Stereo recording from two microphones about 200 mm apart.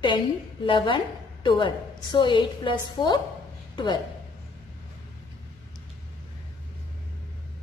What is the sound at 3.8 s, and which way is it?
Speech, 20° left (ahead or behind).